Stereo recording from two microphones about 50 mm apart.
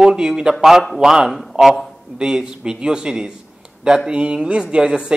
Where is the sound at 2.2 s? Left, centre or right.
Centre.